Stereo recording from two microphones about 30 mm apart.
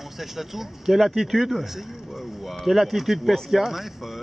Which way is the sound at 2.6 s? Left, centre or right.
Centre.